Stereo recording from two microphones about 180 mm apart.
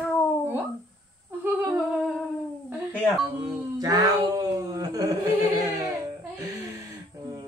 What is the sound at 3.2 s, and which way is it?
Speech, 20° right (ahead or behind).